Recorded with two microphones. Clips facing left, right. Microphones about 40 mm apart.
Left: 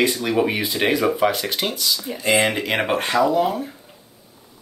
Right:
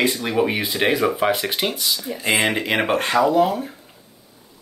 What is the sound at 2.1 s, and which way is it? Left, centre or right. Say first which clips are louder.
Speech: left 2 dB; right.